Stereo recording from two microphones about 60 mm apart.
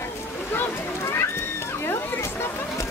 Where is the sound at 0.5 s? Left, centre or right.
Left.